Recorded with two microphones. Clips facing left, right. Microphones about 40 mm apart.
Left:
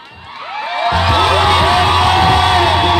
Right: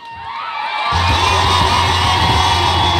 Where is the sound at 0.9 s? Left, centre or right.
Left.